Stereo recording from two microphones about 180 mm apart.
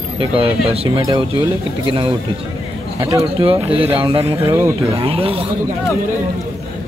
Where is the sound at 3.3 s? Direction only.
30° right (ahead or behind).